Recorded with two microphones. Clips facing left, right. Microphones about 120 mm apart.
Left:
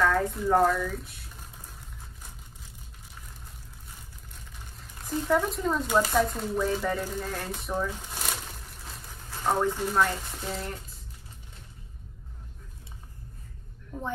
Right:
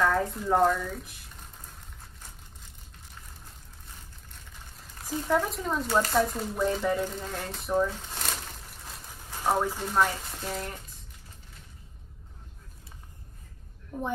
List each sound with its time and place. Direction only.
0.0 s speech: 5° right (ahead or behind)
5.0 s speech: centre (ahead or behind)
7.9 s crumpling: 10° left (ahead or behind)
9.3 s a sound: 10° right (ahead or behind)
9.9 s speech: 10° right (ahead or behind)
13.9 s speech: 15° right (ahead or behind)